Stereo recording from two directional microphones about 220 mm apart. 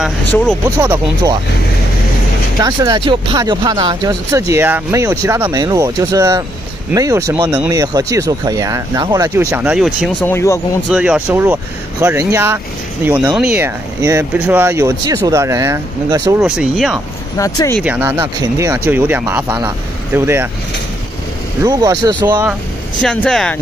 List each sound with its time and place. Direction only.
0.7 s speech: 15° right (ahead or behind)
2.6 s speech: 15° right (ahead or behind)
10.2 s speech: 10° left (ahead or behind)
10.9 s speech: 5° right (ahead or behind)
16.3 s speech: centre (ahead or behind)
17.4 s speech: 15° left (ahead or behind)
17.8 s speech: 10° right (ahead or behind)
21.6 s speech: 15° right (ahead or behind)
23.0 s speech: 5° left (ahead or behind)